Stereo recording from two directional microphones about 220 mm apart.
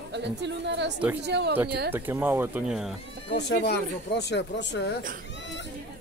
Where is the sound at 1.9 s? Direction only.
10° right (ahead or behind).